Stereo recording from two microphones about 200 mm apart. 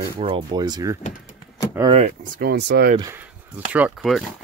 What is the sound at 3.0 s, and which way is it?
Speech, 10° right (ahead or behind).